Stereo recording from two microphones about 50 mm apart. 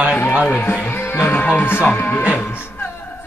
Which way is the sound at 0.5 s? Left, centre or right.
Left.